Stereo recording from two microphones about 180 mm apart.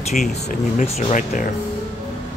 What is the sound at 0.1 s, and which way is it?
Speech, 40° left (ahead or behind).